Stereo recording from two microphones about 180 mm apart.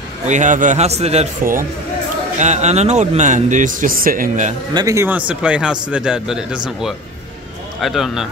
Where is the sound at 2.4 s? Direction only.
40° right (ahead or behind).